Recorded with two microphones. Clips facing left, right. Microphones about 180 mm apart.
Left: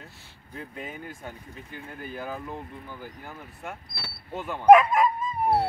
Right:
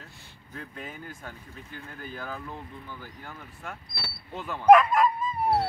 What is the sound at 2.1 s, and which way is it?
Speech, 10° left (ahead or behind).